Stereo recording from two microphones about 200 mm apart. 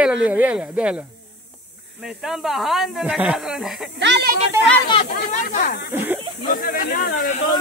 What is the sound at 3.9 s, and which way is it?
Speech, 60° right (ahead or behind).